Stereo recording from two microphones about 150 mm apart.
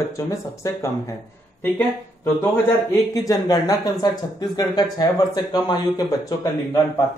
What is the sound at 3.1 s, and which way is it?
Speech, 25° left (ahead or behind).